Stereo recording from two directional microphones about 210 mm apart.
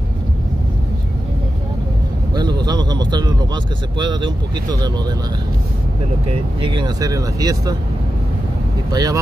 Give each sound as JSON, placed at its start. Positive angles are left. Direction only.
{"t": 2.6, "sound": "a sound", "side_deg": -20}
{"t": 4.0, "sound": "speech", "side_deg": -20}
{"t": 6.6, "sound": "speech", "side_deg": -20}
{"t": 8.9, "sound": "speech", "side_deg": -15}